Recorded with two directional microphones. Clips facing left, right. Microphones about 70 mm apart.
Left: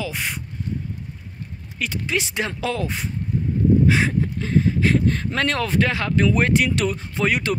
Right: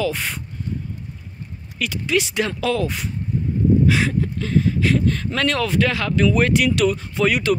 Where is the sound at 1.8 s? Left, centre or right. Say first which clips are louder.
Right 4 dB; left.